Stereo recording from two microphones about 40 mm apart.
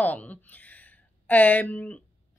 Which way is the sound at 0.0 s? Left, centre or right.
Left.